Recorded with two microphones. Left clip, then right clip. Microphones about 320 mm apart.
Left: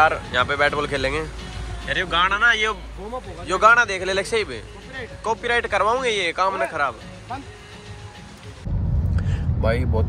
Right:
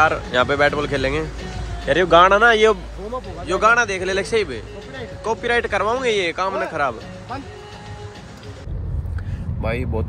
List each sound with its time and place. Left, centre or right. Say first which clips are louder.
0.0 s speech: right 1 dB; centre